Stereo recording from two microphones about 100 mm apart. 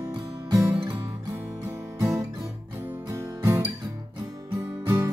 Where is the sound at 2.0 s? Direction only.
30° right (ahead or behind).